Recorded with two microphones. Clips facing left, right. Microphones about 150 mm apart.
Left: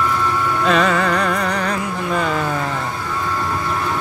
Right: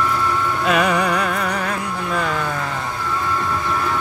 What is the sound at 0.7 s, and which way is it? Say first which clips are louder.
Music: left 1 dB; 10° right (ahead or behind).